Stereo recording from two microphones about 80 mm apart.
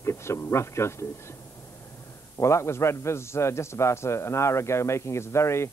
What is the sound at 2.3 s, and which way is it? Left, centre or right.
A man's voice, left.